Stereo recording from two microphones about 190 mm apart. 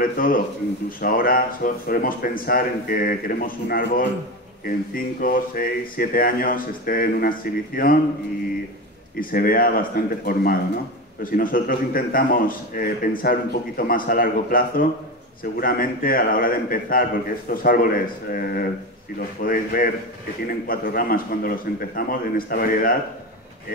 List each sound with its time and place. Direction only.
0.0 s a man's voice: 50° left (ahead or behind)
9.2 s a man's voice: 50° left (ahead or behind)